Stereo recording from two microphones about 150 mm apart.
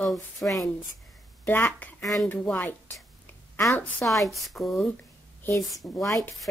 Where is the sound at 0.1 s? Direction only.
Centre (ahead or behind).